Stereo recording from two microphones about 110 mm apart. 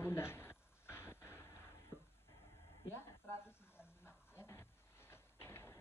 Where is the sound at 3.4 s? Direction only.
20° left (ahead or behind).